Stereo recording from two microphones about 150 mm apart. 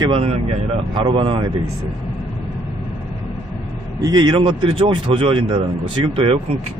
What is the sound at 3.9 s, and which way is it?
A man's voice, 30° right (ahead or behind).